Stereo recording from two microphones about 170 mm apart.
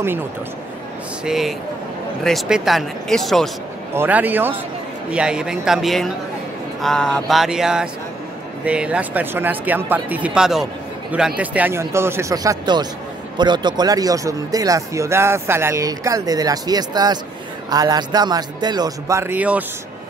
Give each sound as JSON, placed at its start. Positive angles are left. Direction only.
{"t": 1.2, "sound": "speech", "side_deg": 0}
{"t": 3.9, "sound": "speech", "side_deg": -10}